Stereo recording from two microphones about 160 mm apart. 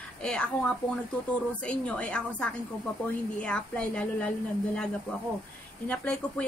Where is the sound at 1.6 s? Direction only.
5° left (ahead or behind).